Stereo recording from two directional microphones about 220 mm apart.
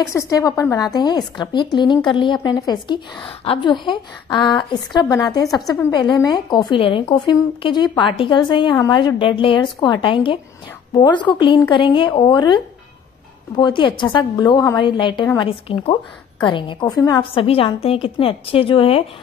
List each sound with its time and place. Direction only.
0.1 s a woman's voice: 15° left (ahead or behind)